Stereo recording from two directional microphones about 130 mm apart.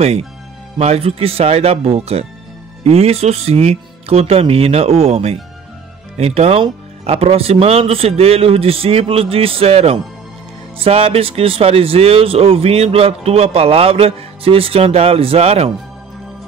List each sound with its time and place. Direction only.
0.7 s speech: 50° right (ahead or behind)